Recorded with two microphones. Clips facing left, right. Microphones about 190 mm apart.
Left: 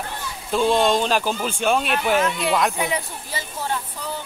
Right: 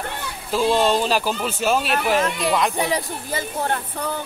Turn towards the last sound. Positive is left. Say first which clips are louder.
# right 3 dB
turn(degrees=-55)  # may be behind; listen again after turning